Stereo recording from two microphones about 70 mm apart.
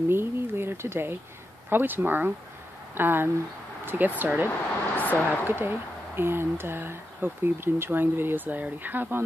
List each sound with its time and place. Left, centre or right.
0.1 s speech: right
4.5 s speech: left
5.4 s speech: right